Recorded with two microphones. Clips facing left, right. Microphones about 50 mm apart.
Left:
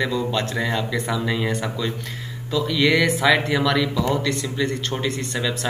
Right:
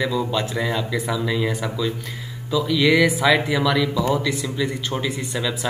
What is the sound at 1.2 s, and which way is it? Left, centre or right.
Speech, centre.